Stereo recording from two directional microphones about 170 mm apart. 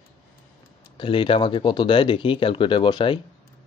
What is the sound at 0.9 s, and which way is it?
Speech, 30° left (ahead or behind).